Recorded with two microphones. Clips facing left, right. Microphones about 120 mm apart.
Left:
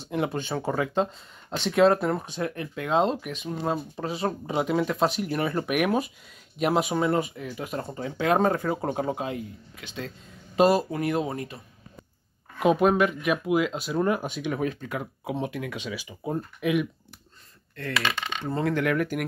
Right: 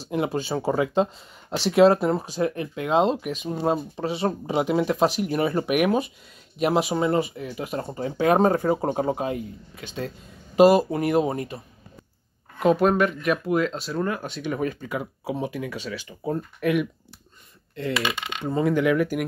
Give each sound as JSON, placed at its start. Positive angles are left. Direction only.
{"t": 0.1, "sound": "speech", "side_deg": -5}
{"t": 12.5, "sound": "speech", "side_deg": 5}
{"t": 13.9, "sound": "speech", "side_deg": 15}
{"t": 14.3, "sound": "speech", "side_deg": 0}
{"t": 17.7, "sound": "speech", "side_deg": -20}